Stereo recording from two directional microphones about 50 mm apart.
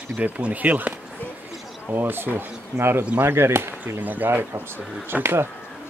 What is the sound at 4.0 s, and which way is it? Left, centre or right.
Speech, right.